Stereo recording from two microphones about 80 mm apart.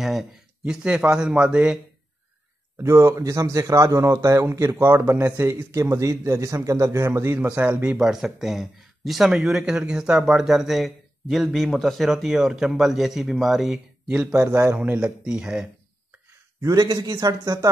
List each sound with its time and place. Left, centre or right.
0.0 s a man's voice: centre
2.8 s speech: right
7.5 s speech: centre
8.0 s speech: centre
14.5 s speech: right
14.8 s speech: centre
16.6 s speech: right